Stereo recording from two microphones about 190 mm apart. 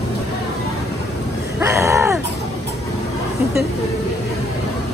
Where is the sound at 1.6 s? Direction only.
15° right (ahead or behind).